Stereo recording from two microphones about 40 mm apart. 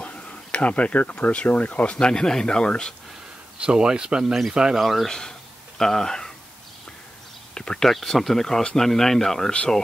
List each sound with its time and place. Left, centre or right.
0.0 s a sound: left
1.2 s speech: left
3.5 s speech: right
4.7 s speech: centre
5.8 s speech: centre
7.5 s speech: centre
7.9 s speech: centre